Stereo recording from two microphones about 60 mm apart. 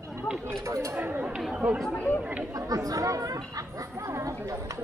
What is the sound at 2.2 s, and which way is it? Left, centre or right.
Chatter, right.